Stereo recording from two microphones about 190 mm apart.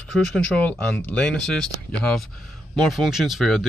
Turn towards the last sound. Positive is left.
turn(degrees=0)  # may be behind; listen again after turning